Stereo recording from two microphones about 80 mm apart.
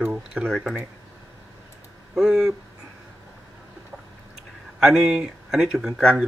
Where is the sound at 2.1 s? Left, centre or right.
Centre.